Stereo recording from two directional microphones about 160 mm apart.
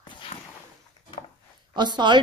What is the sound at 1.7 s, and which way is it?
Speech, 30° right (ahead or behind).